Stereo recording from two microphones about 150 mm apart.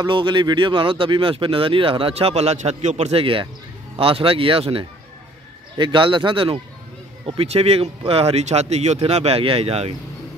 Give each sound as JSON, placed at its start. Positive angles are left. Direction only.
{"t": 0.0, "sound": "speech", "side_deg": -30}